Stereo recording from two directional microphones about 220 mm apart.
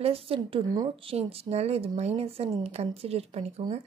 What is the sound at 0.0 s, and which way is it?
A woman's voice, 25° right (ahead or behind).